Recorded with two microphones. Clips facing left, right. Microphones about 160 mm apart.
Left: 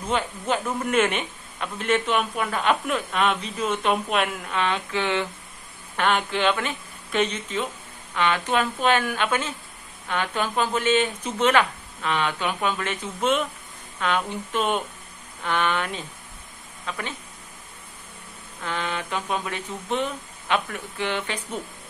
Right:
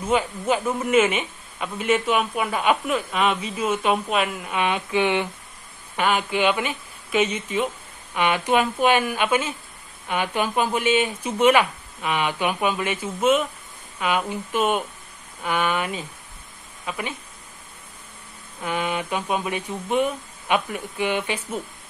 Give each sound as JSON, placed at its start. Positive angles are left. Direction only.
{"t": 0.1, "sound": "a man's voice", "side_deg": -10}
{"t": 4.6, "sound": "a man's voice", "side_deg": -15}
{"t": 18.6, "sound": "a man's voice", "side_deg": -15}